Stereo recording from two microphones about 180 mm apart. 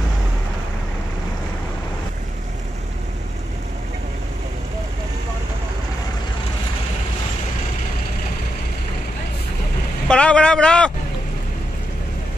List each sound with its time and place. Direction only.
10.0 s a man's voice: 5° left (ahead or behind)